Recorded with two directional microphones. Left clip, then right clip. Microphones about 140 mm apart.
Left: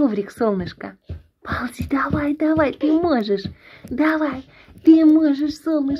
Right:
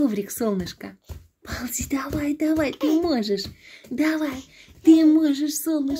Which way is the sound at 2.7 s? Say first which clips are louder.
Left 3 dB; 20° right (ahead or behind).